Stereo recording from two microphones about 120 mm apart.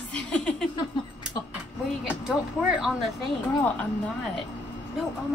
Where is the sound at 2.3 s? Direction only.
5° right (ahead or behind).